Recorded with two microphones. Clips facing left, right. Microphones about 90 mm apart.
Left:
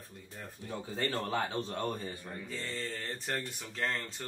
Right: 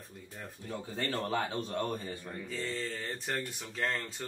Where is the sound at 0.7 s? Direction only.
25° left (ahead or behind).